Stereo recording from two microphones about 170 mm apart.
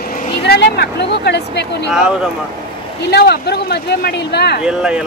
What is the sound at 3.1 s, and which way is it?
Speech, 75° left (ahead or behind).